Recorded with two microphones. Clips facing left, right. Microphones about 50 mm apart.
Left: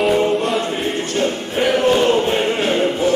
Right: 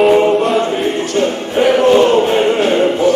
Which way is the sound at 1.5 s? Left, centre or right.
Centre.